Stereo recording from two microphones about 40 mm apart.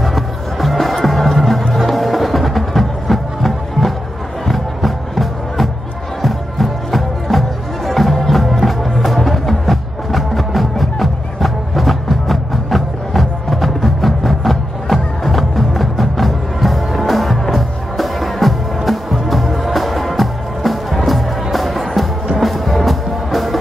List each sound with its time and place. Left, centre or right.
0.0 s music: centre